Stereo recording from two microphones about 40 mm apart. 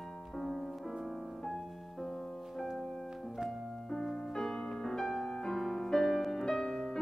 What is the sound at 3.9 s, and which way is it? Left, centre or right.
Music, centre.